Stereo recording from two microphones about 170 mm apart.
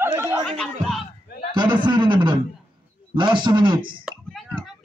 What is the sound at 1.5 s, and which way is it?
A man's voice, 25° right (ahead or behind).